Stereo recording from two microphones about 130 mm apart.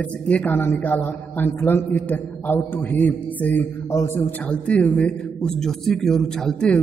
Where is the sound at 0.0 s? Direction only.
10° left (ahead or behind).